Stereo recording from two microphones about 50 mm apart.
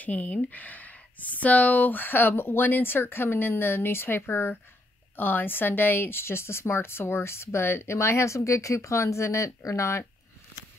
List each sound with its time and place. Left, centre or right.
0.0 s speech: left
9.7 s speech: left